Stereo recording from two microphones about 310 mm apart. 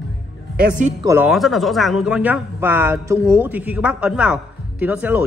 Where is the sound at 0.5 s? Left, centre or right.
Right.